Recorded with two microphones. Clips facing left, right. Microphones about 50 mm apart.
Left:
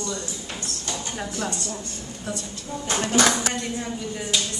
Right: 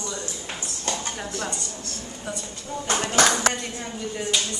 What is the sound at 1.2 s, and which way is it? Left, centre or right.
Speech, centre.